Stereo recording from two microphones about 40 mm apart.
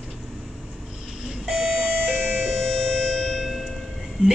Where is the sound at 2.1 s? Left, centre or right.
Right.